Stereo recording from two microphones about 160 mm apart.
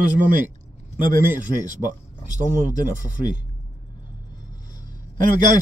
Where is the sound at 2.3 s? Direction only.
50° right (ahead or behind).